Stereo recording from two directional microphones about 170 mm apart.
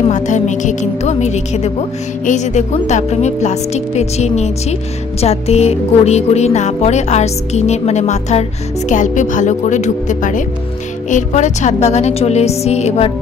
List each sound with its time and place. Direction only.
0.1 s a woman's voice: 45° left (ahead or behind)